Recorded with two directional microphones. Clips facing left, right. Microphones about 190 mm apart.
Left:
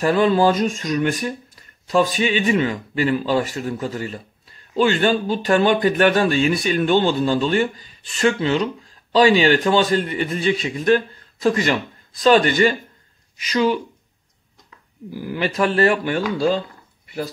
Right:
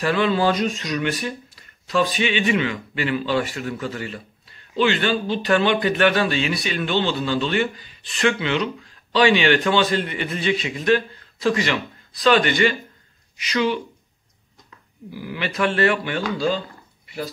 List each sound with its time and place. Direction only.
0.0 s speech: 40° left (ahead or behind)
15.0 s speech: 45° left (ahead or behind)